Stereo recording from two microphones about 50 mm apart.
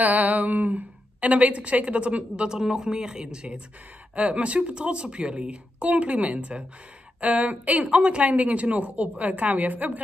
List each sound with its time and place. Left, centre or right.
0.0 s a woman's voice: right